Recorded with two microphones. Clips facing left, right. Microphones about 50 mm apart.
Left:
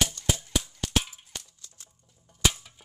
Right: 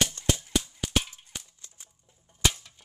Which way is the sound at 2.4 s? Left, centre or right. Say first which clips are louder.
Left 1 dB; centre.